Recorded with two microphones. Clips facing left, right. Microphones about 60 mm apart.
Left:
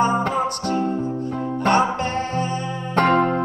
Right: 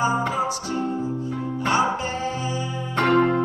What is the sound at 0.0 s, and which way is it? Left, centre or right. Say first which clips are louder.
Music: left 3 dB; left.